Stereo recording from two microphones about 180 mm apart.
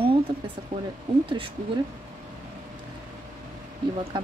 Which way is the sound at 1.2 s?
30° right (ahead or behind).